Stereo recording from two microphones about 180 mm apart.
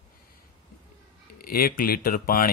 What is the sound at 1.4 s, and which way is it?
Speech, 55° left (ahead or behind).